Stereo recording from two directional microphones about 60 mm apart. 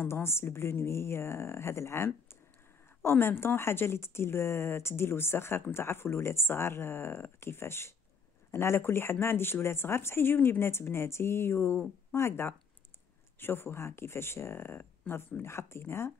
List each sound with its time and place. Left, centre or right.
0.0 s speech: left